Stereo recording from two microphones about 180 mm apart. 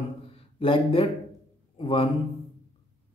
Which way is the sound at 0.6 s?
30° left (ahead or behind).